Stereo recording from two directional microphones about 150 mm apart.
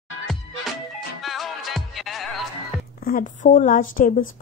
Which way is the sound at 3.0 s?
60° left (ahead or behind).